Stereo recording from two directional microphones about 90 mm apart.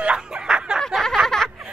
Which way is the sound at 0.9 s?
5° left (ahead or behind).